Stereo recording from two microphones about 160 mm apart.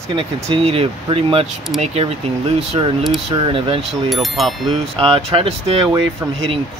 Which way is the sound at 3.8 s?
Centre (ahead or behind).